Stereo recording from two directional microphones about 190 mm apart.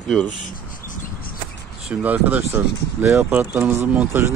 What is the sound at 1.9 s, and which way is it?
Speech, 10° right (ahead or behind).